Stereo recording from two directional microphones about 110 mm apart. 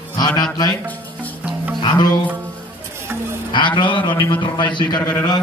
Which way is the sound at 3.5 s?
45° left (ahead or behind).